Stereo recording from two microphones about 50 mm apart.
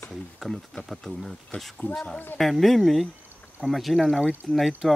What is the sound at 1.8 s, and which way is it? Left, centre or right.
Speech, left.